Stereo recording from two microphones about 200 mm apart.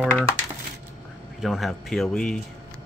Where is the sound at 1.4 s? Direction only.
Centre (ahead or behind).